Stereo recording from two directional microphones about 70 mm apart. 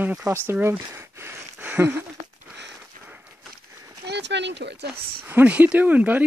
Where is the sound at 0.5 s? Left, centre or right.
Right.